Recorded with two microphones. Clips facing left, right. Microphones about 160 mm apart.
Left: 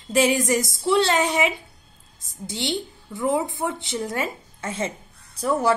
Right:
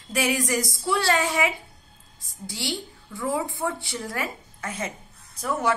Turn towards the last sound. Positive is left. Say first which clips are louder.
# left 4 dB
turn(degrees=35)  # may be behind; listen again after turning